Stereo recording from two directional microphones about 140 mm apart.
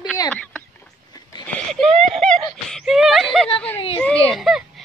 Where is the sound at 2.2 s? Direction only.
5° left (ahead or behind).